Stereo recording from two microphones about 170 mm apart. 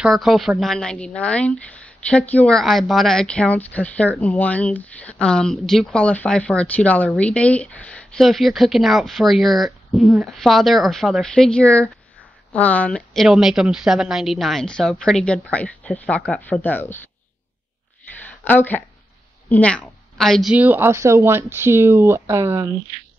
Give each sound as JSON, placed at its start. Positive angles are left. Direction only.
{"t": 0.0, "sound": "a woman's voice", "side_deg": 0}
{"t": 18.1, "sound": "a sound", "side_deg": 10}
{"t": 19.5, "sound": "a woman's voice", "side_deg": 10}
{"t": 20.5, "sound": "speech", "side_deg": -10}